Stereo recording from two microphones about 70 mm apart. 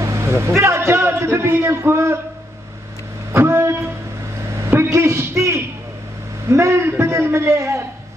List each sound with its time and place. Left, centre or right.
0.0 s vehicle: right
0.6 s a man's voice: right
3.3 s speech: right
4.6 s a sound: right
6.5 s a man's voice: right